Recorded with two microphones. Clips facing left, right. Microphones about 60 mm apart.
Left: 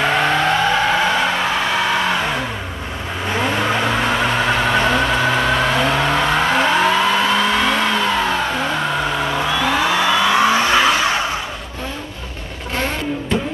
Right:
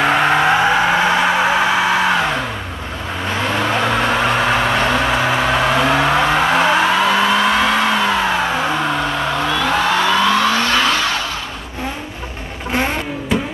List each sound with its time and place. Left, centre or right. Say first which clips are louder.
0.0 s vehicle: right 3 dB; centre
3.5 s vehicle: right 4 dB; centre
9.3 s vehicle: right 2 dB; centre